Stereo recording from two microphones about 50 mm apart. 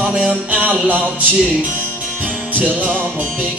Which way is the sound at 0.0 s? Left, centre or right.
Right.